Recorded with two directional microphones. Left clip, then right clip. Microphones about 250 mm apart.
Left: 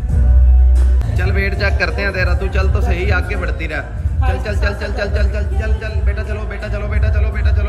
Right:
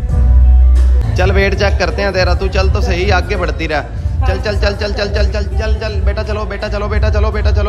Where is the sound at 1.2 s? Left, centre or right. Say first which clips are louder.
Right 7 dB; centre.